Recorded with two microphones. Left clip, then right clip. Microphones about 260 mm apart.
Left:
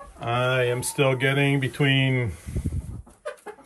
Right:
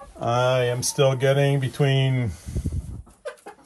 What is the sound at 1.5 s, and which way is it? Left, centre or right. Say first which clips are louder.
Speech: left 1 dB; right.